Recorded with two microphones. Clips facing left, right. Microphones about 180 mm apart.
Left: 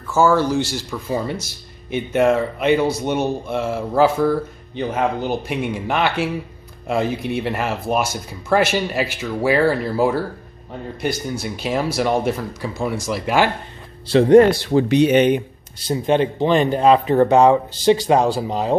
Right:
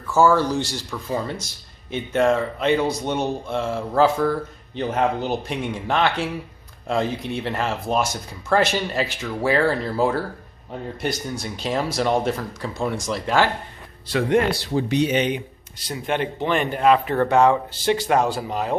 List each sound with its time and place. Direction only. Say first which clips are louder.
0.1 s speech: left 1 dB; centre (ahead or behind)
14.0 s speech: left 9 dB; 30° left (ahead or behind)
14.7 s speech: left 6 dB; 70° left (ahead or behind); by 15.4 s 55° left (ahead or behind)
15.9 s speech: left 7 dB; 30° left (ahead or behind)
18.1 s speech: left 4 dB; 30° left (ahead or behind)